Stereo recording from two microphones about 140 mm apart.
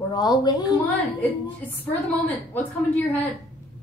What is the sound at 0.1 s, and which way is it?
Speech, 30° left (ahead or behind).